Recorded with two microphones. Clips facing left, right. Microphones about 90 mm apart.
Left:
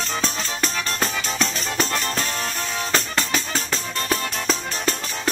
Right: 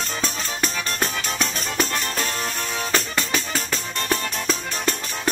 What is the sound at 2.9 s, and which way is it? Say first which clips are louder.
Music: left 1 dB; 25° left (ahead or behind).